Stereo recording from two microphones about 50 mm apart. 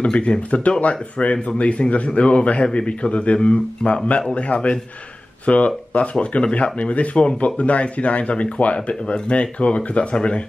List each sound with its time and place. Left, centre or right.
0.0 s speech: left